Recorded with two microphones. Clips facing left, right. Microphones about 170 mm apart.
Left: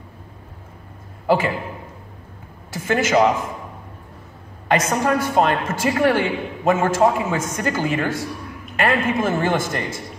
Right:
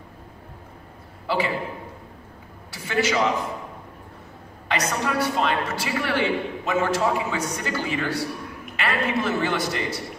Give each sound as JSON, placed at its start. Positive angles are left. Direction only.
{"t": 1.2, "sound": "a man's voice", "side_deg": 45}
{"t": 2.7, "sound": "a man's voice", "side_deg": 45}
{"t": 4.6, "sound": "a man's voice", "side_deg": 45}